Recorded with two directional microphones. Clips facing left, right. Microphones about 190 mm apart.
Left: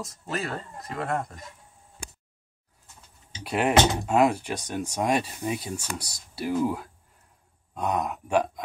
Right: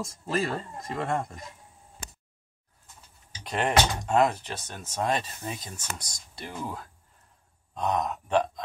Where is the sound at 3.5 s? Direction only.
5° left (ahead or behind).